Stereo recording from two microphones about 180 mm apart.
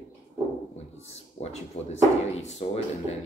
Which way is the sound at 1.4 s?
35° left (ahead or behind).